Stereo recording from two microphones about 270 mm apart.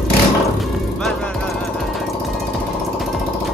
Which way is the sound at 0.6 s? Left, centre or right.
Centre.